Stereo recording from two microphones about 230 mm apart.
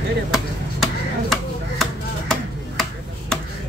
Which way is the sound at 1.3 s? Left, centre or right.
Centre.